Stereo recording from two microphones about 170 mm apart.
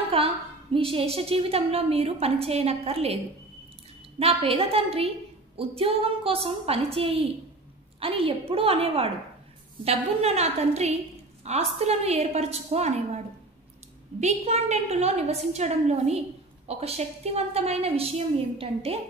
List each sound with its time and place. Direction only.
0.1 s a woman's voice: 35° right (ahead or behind)
4.2 s a woman's voice: 35° right (ahead or behind)
14.2 s a woman's voice: 40° right (ahead or behind)